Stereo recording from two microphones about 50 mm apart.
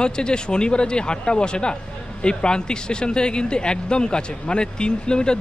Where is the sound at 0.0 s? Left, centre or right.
Centre.